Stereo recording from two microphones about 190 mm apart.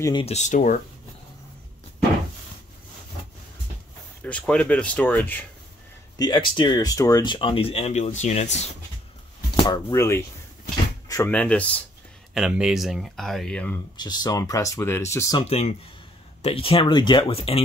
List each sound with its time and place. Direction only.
0.2 s speech: 35° left (ahead or behind)
4.2 s speech: 5° left (ahead or behind)
6.1 s speech: 20° left (ahead or behind)
9.6 s speech: 20° left (ahead or behind)
12.4 s speech: 5° right (ahead or behind)
13.9 s speech: 20° left (ahead or behind)
15.4 s speech: 35° left (ahead or behind)